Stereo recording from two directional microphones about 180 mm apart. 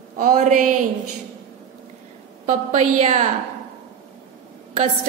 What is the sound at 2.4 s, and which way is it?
Speech, 40° right (ahead or behind).